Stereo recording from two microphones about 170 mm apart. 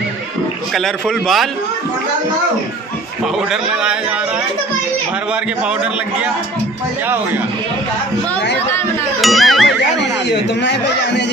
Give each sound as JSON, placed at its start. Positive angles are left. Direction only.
{"t": 0.7, "sound": "speech", "side_deg": 0}
{"t": 9.2, "sound": "music", "side_deg": 0}
{"t": 10.6, "sound": "a man's voice", "side_deg": 90}